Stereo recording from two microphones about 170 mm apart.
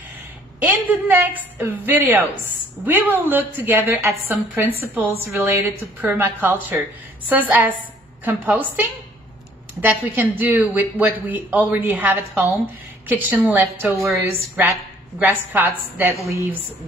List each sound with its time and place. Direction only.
0.6 s a woman's voice: 10° right (ahead or behind)
15.1 s a woman's voice: 10° right (ahead or behind)